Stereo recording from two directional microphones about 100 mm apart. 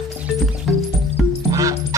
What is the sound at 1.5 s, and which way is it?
Music, 35° right (ahead or behind).